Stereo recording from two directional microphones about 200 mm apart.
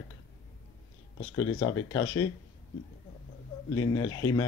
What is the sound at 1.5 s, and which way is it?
Speech, 20° left (ahead or behind).